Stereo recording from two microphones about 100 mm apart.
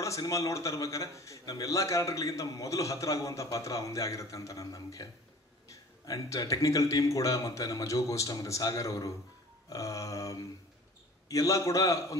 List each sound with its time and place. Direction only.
0.0 s a man's voice: 30° left (ahead or behind)